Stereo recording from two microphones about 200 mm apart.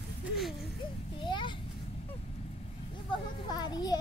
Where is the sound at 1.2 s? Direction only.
25° left (ahead or behind).